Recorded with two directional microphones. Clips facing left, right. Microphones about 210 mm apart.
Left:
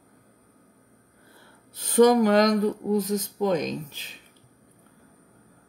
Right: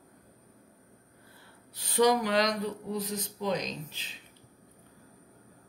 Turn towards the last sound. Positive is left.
turn(degrees=45)  # may be behind; listen again after turning